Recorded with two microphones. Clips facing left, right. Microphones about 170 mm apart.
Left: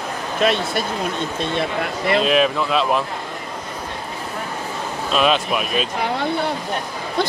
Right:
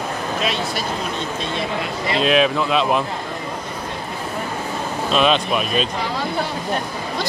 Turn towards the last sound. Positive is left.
turn(degrees=60)  # may be behind; listen again after turning